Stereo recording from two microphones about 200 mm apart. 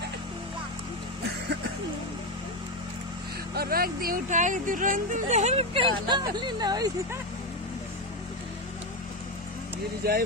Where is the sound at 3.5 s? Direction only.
50° right (ahead or behind); by 7.2 s 20° right (ahead or behind).